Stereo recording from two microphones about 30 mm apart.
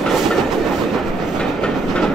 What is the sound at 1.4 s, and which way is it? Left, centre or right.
Train, left.